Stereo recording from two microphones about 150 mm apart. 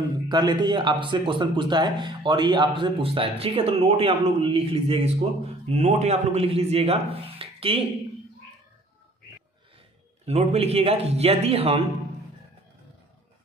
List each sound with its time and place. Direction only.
0.3 s speech: 30° right (ahead or behind)
10.2 s a man's voice: 45° right (ahead or behind)